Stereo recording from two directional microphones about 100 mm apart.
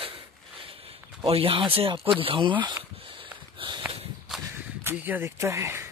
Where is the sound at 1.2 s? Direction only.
70° right (ahead or behind).